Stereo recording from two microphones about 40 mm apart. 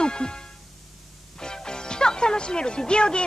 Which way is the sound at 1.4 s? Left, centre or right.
Centre.